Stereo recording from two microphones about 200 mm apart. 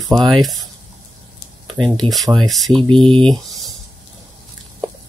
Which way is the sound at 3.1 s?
25° right (ahead or behind).